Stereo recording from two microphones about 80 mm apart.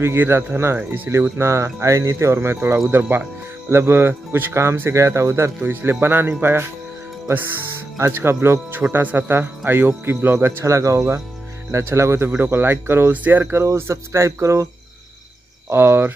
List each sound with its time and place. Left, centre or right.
0.0 s speech: right
1.1 s speech: right
8.0 s speech: right
13.1 s speech: right
15.7 s speech: right